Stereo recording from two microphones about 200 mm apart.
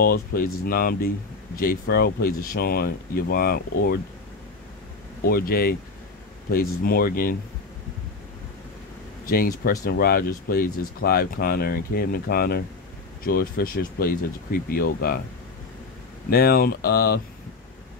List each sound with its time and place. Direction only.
0.0 s speech: 50° left (ahead or behind)
5.2 s speech: 50° left (ahead or behind)
9.3 s speech: 50° left (ahead or behind)
16.3 s speech: 50° left (ahead or behind)